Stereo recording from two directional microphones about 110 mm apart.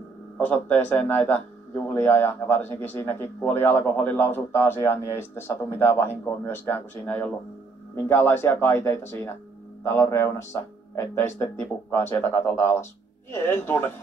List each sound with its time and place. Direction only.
0.4 s a man's voice: 15° left (ahead or behind)